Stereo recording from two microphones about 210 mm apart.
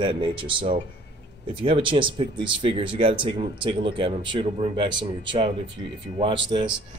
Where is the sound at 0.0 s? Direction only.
25° right (ahead or behind).